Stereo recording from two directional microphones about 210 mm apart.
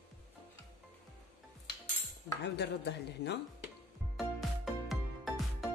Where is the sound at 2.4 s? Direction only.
55° left (ahead or behind).